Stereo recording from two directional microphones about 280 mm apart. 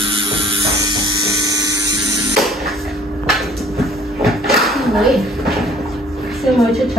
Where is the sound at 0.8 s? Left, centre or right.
Centre.